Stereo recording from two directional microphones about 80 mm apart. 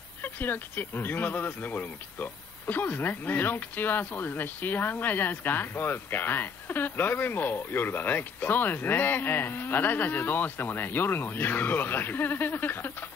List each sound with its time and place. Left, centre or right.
0.2 s speech: left